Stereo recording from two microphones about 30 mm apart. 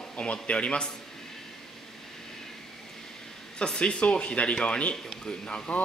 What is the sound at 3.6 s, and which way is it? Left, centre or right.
Speech, left.